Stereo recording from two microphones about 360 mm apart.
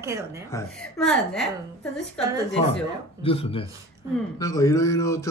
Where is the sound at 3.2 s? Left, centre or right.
Centre.